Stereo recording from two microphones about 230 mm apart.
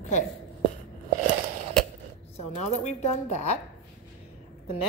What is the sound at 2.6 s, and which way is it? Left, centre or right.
Speech, left.